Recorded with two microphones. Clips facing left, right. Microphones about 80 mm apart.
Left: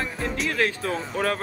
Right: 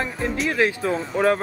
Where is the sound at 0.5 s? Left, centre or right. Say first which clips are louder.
Right 4 dB; right.